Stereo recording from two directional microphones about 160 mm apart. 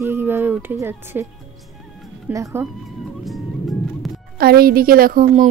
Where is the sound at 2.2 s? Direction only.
20° right (ahead or behind).